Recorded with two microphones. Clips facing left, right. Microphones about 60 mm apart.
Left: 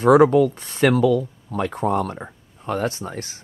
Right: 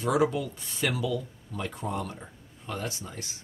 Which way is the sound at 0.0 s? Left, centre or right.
Left.